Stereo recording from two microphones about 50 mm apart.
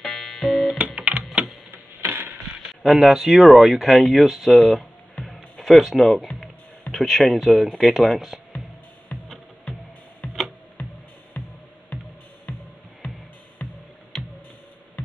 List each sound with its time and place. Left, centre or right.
0.0 s music: centre
0.7 s music: right
1.7 s a sound: right
2.7 s speech: centre
5.2 s music: centre
6.9 s speech: centre
10.8 s music: left
13.6 s music: left
14.1 s music: centre